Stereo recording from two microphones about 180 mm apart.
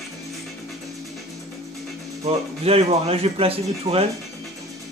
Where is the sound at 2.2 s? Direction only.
35° right (ahead or behind).